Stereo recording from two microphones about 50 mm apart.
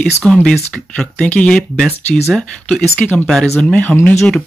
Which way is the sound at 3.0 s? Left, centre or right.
Left.